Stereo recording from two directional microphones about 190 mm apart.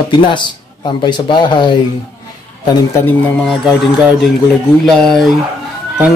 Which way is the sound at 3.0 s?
5° left (ahead or behind).